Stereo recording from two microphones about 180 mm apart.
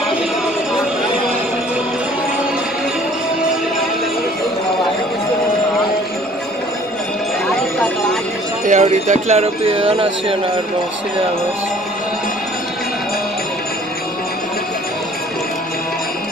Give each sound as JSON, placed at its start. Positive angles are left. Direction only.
{"t": 8.6, "sound": "music", "side_deg": -40}